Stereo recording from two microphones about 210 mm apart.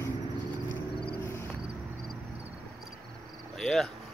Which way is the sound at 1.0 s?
10° left (ahead or behind).